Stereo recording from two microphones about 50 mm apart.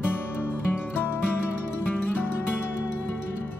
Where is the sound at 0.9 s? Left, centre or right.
Left.